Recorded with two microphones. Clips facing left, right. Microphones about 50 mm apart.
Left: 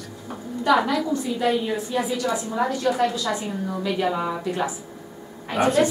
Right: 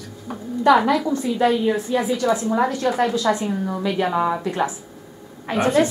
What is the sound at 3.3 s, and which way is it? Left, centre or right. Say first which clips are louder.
A woman's voice: right 5 dB; right.